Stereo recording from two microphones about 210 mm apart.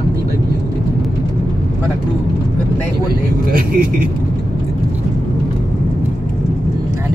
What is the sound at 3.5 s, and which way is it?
Speech, 45° right (ahead or behind).